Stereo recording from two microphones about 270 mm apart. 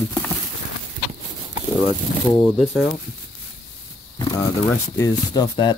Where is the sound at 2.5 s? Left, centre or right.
Centre.